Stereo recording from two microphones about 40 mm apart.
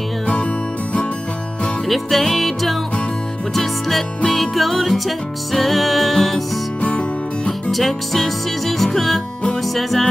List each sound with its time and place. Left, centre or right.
1.9 s music: centre
4.3 s music: centre
6.8 s music: left
7.7 s music: centre